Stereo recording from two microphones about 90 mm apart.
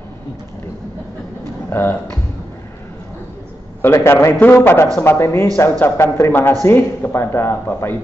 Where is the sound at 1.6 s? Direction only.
25° left (ahead or behind).